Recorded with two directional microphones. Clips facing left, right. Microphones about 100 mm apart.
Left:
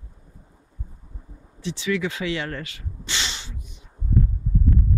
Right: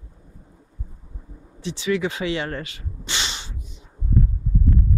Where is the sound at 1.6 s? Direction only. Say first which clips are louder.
Right 2 dB; 20° right (ahead or behind).